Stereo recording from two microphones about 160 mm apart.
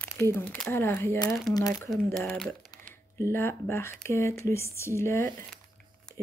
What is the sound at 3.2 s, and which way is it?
Speech, 15° left (ahead or behind).